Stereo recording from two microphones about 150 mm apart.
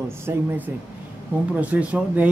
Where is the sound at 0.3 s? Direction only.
15° right (ahead or behind).